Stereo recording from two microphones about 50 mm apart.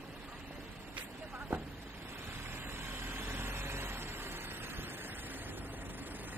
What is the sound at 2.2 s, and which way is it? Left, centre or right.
Vehicle, right.